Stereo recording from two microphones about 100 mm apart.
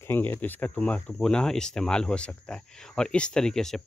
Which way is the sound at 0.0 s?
20° left (ahead or behind).